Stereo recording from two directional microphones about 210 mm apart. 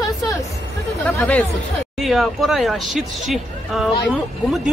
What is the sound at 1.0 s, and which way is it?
Speech, 5° left (ahead or behind).